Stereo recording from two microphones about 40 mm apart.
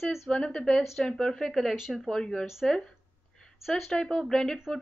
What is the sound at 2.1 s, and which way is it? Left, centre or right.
Speech, centre.